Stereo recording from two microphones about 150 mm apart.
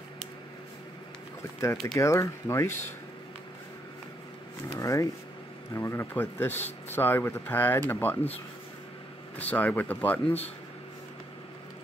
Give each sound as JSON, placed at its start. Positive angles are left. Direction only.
{"t": 2.0, "sound": "speech", "side_deg": 20}
{"t": 4.7, "sound": "speech", "side_deg": 20}
{"t": 9.4, "sound": "speech", "side_deg": 10}